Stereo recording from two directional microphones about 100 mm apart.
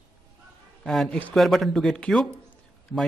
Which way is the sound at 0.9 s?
Centre (ahead or behind).